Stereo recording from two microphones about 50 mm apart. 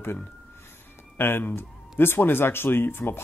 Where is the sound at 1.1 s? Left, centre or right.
Left.